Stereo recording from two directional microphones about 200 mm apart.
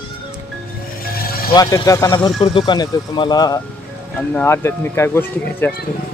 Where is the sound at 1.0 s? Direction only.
50° left (ahead or behind).